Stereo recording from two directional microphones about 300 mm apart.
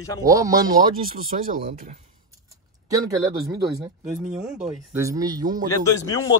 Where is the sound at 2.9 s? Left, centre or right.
Centre.